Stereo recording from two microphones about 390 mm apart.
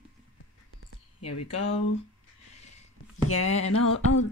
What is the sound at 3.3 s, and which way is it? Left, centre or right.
Speech, left.